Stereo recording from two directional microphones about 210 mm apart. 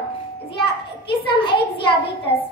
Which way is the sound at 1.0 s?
25° left (ahead or behind).